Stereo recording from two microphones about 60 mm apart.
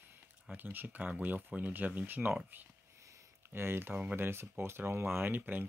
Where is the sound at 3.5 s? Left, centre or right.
Right.